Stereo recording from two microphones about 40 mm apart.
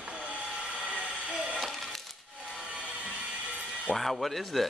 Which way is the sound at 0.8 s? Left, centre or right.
Right.